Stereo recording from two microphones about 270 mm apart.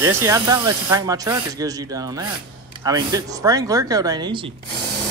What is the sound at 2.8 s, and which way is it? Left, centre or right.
Speech, centre.